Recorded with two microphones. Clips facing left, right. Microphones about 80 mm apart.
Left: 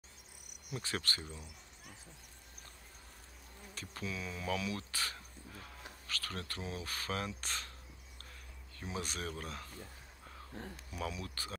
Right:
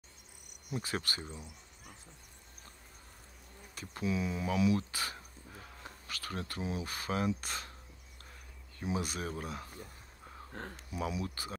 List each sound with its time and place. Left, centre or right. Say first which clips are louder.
0.7 s speech: right 2 dB; centre
3.7 s speech: right 8 dB; right
8.7 s speech: right 5 dB; centre
10.5 s speech: right 3 dB; right
10.9 s speech: right 5 dB; centre